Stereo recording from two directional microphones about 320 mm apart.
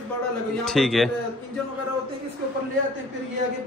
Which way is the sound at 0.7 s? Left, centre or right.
Centre.